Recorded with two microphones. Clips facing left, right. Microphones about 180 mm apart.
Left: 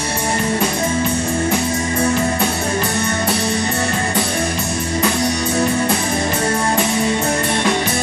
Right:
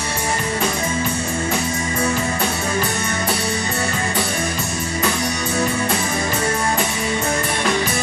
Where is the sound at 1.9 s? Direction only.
40° left (ahead or behind).